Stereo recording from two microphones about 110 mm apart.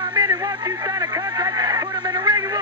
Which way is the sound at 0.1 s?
35° right (ahead or behind).